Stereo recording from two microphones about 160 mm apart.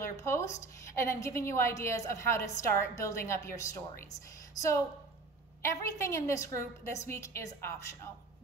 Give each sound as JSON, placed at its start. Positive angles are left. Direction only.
{"t": 0.0, "sound": "a woman's voice", "side_deg": 15}